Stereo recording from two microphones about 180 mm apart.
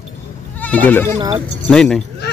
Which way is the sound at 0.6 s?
10° left (ahead or behind).